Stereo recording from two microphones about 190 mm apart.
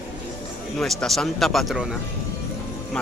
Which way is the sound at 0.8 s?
Centre (ahead or behind).